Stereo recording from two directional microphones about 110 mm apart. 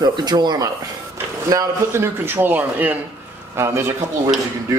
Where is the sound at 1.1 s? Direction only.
20° right (ahead or behind).